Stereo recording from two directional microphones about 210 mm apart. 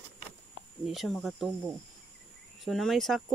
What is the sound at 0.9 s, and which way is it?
Speech, centre (ahead or behind).